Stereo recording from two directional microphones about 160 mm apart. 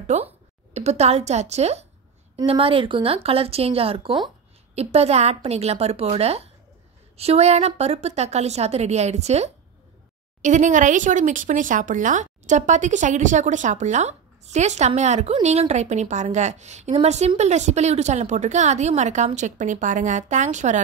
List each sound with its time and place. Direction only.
0.0 s speech: 45° right (ahead or behind)